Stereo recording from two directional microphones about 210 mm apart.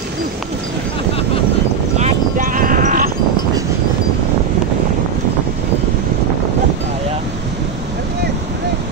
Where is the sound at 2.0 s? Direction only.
35° right (ahead or behind).